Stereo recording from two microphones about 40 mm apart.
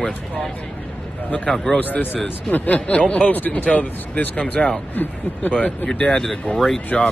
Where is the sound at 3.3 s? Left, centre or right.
Left.